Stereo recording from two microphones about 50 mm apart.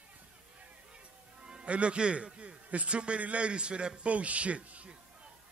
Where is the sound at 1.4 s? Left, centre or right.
Centre.